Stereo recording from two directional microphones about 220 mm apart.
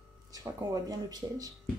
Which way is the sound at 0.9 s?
15° right (ahead or behind).